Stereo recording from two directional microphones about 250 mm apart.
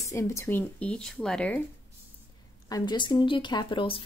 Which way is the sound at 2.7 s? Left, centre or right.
Centre.